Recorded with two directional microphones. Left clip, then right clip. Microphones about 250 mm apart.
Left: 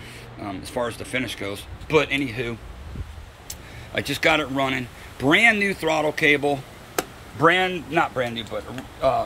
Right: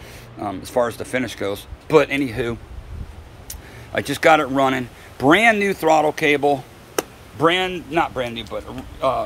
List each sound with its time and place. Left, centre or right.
0.4 s speech: centre